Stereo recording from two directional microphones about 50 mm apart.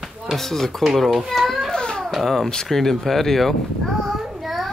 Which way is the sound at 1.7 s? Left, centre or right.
Centre.